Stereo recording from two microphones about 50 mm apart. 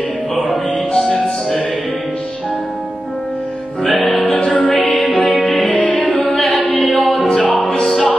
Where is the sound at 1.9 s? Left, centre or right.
Left.